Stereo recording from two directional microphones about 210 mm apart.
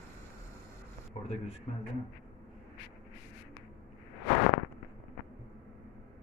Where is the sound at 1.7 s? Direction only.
30° left (ahead or behind).